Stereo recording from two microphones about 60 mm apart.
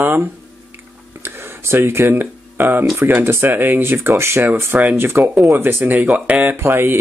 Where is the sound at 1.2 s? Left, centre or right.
Right.